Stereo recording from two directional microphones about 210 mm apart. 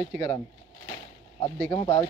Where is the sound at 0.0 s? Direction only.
15° left (ahead or behind).